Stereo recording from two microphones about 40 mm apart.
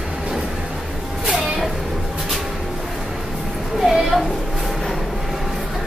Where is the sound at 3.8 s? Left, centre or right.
Centre.